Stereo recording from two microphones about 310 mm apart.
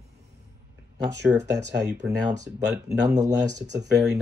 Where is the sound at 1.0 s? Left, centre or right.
Centre.